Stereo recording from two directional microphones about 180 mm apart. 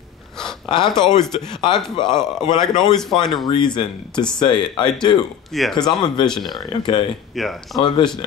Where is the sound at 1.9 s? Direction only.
25° left (ahead or behind).